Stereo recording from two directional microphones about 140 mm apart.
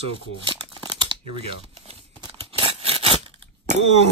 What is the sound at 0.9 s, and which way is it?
Crumpling, 35° right (ahead or behind).